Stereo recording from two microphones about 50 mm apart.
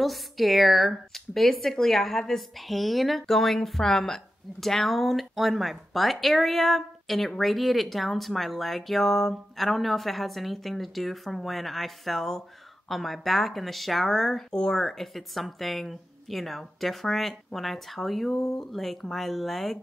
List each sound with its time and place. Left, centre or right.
0.0 s speech: centre